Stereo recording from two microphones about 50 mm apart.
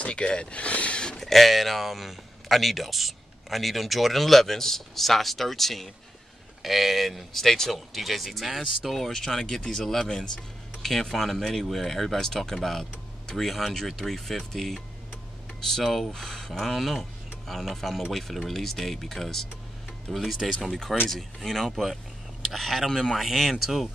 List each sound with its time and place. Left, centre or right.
0.0 s a sound: left
1.2 s speech: centre
8.9 s speech: centre